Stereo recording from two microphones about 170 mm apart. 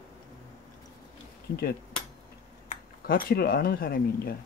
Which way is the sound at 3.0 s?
60° left (ahead or behind).